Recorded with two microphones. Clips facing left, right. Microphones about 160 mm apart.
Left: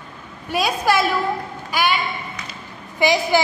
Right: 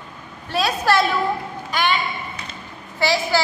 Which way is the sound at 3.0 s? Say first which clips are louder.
Left 3 dB; 15° left (ahead or behind).